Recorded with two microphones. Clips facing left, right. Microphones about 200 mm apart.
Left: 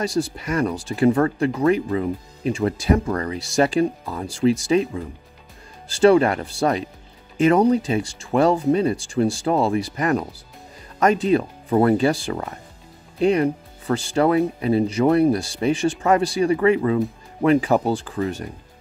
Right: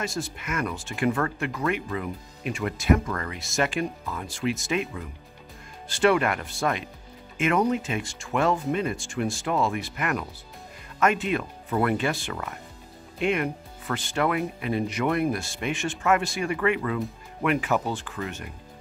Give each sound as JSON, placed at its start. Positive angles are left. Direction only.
{"t": 0.0, "sound": "speech", "side_deg": 35}